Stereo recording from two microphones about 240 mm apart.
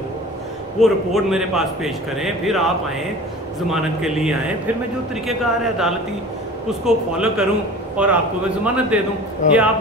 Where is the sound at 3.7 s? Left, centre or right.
Centre.